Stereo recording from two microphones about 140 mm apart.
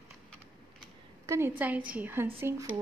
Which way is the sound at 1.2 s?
20° right (ahead or behind).